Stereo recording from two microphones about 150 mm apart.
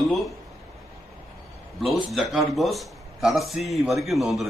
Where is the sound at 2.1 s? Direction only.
Centre (ahead or behind).